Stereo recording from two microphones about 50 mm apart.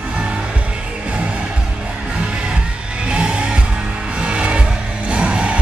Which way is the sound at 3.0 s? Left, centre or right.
Right.